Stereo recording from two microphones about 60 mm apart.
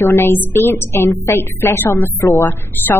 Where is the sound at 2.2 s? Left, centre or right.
Left.